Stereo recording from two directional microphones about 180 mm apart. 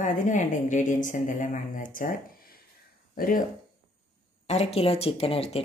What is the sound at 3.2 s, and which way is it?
Speech, 50° left (ahead or behind).